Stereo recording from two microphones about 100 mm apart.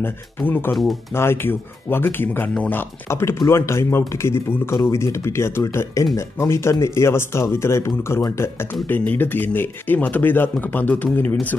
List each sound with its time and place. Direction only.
0.0 s speech: 20° left (ahead or behind)